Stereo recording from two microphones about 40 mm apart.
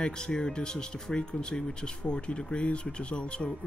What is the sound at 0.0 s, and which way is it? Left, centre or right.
Speech, centre.